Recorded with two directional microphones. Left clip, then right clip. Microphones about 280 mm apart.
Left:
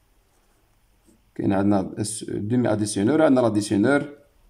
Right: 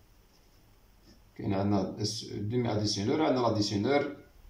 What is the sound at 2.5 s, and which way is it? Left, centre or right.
Speech, left.